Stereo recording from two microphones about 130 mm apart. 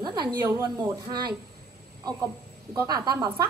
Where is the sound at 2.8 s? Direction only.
30° right (ahead or behind).